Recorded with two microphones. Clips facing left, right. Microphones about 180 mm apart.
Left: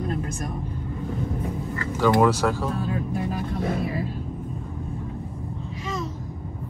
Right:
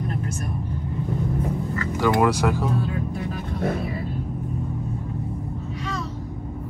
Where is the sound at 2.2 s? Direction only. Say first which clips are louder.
Even; 15° right (ahead or behind).